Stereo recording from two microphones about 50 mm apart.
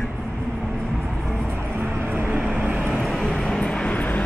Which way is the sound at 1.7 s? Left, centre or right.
Right.